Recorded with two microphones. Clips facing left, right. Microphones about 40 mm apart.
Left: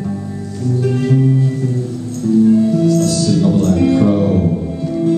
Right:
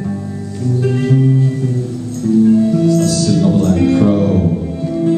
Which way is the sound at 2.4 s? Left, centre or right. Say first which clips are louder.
Right 1 dB; centre.